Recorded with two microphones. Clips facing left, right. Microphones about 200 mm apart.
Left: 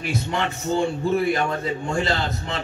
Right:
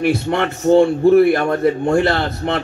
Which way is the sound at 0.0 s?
65° right (ahead or behind).